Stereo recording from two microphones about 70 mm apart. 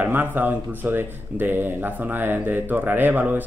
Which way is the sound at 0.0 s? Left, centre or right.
Right.